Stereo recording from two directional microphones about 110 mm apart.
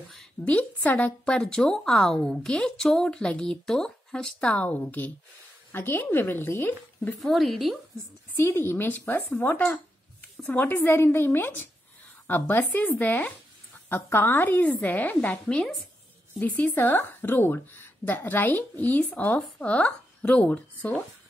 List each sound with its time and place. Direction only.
0.5 s a woman's voice: 10° left (ahead or behind)
7.2 s speech: centre (ahead or behind)
8.4 s a woman's voice: 20° left (ahead or behind)